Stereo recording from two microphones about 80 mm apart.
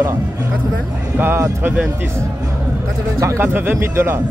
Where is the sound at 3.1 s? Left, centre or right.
Right.